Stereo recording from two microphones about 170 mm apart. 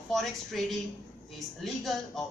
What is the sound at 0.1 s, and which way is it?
Speech, centre (ahead or behind).